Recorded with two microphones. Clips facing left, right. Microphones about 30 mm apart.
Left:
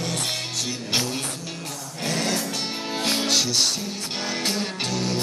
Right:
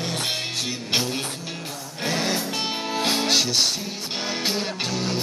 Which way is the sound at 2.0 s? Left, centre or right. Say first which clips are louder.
Right 1 dB; centre.